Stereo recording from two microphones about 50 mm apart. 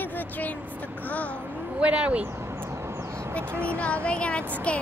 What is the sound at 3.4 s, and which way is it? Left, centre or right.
Speech, right.